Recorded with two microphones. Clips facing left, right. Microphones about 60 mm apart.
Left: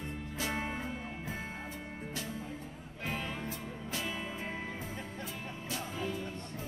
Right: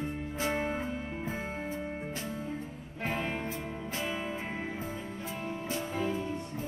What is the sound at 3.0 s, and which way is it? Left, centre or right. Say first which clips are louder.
Music: right 4 dB; right.